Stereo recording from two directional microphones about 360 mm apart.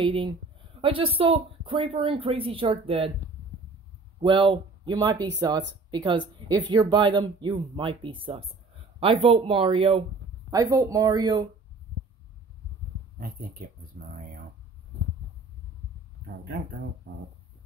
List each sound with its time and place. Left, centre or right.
0.0 s speech: centre
4.2 s speech: centre
5.1 s speech: right
5.9 s a woman's voice: centre
13.9 s a sound: right